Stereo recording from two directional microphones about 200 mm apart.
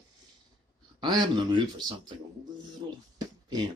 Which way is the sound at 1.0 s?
20° right (ahead or behind).